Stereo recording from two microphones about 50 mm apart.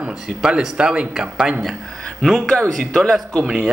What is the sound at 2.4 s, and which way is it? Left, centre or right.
Speech, centre.